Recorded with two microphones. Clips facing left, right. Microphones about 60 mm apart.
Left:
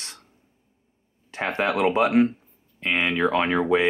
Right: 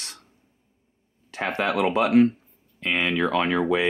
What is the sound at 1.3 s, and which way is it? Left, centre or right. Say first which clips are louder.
Speech: left 1 dB; left.